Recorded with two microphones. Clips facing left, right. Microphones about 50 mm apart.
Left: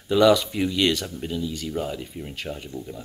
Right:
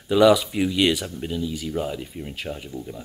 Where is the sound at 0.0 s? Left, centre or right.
Centre.